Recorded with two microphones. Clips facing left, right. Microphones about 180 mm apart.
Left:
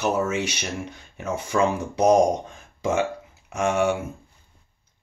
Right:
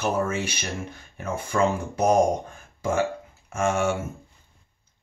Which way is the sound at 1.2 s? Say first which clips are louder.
Left 1 dB; 15° left (ahead or behind).